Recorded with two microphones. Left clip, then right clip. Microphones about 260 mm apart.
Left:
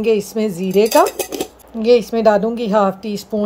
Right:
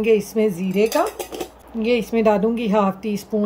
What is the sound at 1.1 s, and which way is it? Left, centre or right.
Speech, left.